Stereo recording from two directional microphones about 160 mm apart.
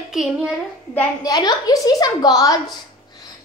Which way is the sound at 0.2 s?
Centre (ahead or behind).